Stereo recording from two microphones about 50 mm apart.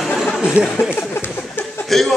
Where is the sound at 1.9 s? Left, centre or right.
Centre.